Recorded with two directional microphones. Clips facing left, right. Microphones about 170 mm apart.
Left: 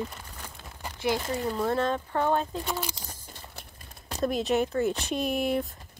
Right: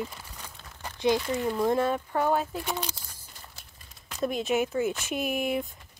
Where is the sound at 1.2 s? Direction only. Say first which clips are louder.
Right 1 dB; 35° left (ahead or behind).